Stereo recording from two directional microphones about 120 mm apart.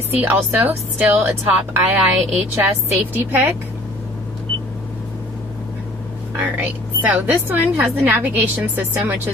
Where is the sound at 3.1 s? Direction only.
20° right (ahead or behind).